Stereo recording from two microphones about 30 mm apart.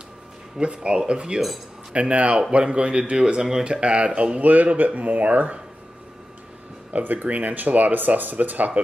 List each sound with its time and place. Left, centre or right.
0.6 s speech: right
2.0 s speech: right
2.6 s speech: right
3.2 s speech: right
3.8 s speech: right
4.4 s speech: right
7.0 s speech: right
7.2 s speech: right
7.5 s speech: right